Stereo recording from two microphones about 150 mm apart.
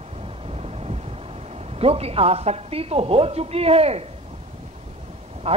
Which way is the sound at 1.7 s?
40° right (ahead or behind).